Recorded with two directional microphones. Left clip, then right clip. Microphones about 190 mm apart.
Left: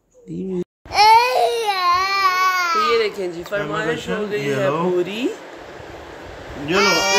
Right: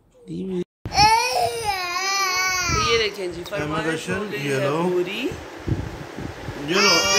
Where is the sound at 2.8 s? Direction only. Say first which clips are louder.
Even; 10° left (ahead or behind).